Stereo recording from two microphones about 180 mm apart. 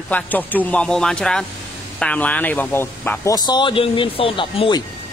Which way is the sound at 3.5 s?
25° left (ahead or behind).